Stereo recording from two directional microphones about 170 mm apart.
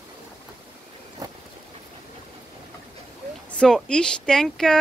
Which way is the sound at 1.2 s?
20° right (ahead or behind).